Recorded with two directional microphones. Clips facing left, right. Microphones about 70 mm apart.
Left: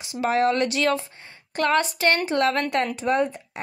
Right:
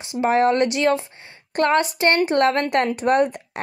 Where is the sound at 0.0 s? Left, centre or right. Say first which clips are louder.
Right 4 dB; right.